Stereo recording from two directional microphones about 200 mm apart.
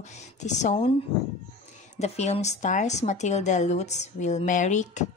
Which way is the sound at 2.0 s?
35° left (ahead or behind).